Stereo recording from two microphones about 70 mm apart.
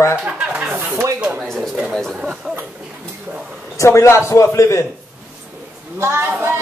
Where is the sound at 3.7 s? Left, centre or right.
Left.